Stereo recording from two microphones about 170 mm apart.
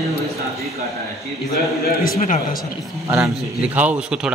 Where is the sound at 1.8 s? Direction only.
60° left (ahead or behind).